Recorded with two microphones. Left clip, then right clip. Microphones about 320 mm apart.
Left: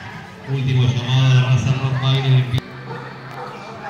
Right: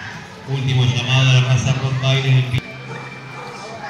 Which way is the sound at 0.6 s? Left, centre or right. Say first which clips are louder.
Right 4 dB; right.